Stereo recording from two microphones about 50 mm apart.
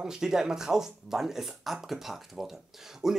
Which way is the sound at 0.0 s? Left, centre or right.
Centre.